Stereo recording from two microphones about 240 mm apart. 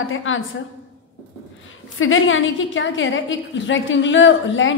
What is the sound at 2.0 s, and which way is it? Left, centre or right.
A woman's voice, left.